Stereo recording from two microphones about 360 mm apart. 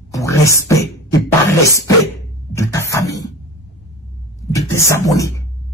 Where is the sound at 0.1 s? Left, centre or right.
Centre.